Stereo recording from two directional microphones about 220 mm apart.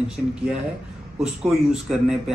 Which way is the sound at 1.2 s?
Centre (ahead or behind).